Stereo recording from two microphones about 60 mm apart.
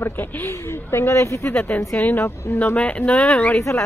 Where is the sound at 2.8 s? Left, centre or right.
Left.